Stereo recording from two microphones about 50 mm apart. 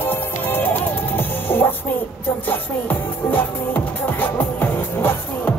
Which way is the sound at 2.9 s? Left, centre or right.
Left.